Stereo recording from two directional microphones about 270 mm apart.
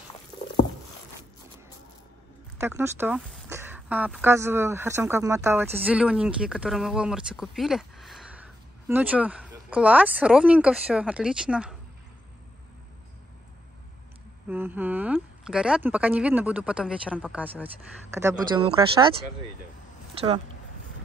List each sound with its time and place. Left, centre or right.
2.6 s speech: centre
14.5 s speech: centre